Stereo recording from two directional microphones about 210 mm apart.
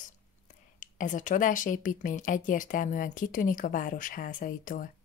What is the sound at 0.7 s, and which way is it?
Speech, 40° left (ahead or behind).